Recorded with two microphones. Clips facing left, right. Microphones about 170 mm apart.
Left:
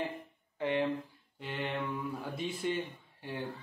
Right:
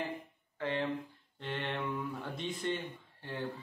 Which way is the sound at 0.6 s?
20° left (ahead or behind).